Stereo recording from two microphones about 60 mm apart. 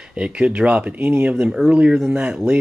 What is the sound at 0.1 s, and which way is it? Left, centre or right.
Speech, centre.